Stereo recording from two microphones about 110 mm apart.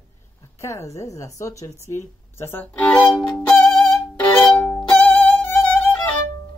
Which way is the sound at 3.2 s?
15° left (ahead or behind).